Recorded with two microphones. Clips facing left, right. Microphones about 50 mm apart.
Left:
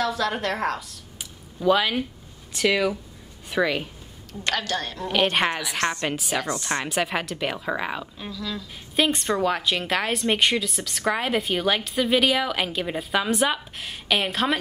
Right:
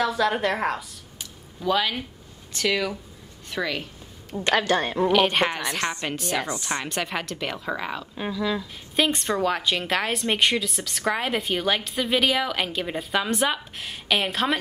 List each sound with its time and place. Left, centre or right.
0.0 s a woman's voice: centre
1.1 s a sound: centre
2.5 s speech: centre
4.3 s a woman's voice: right
5.1 s a woman's voice: centre
5.8 s a woman's voice: centre
6.0 s a woman's voice: centre
8.2 s a woman's voice: right
8.9 s a woman's voice: centre